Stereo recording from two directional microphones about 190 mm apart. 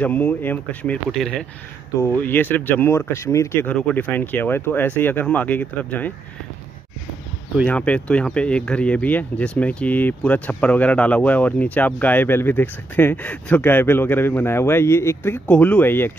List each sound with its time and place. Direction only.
0.0 s speech: 10° left (ahead or behind)
7.6 s speech: 5° left (ahead or behind)